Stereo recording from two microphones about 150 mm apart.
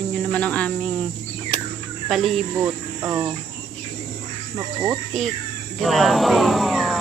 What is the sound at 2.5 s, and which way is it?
Cricket, 15° right (ahead or behind).